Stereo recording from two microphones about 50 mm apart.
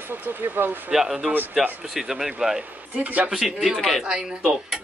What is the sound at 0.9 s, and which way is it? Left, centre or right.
Speech, centre.